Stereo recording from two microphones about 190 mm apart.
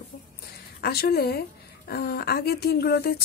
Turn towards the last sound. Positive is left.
turn(degrees=55)  # may be behind; listen again after turning